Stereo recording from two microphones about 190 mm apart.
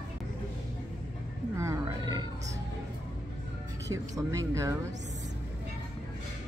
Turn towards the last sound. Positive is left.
turn(degrees=-15)  # may be behind; listen again after turning